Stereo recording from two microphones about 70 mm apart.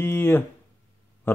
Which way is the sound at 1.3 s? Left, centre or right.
Left.